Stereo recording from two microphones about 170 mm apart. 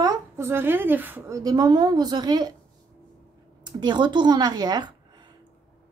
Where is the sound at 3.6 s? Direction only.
25° right (ahead or behind).